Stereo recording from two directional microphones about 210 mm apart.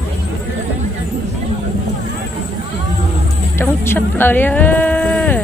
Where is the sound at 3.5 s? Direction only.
10° left (ahead or behind).